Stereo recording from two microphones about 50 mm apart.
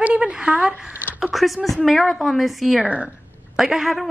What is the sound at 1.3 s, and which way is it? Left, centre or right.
A woman's voice, centre.